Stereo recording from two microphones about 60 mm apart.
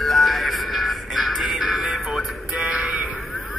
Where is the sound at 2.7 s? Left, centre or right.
Centre.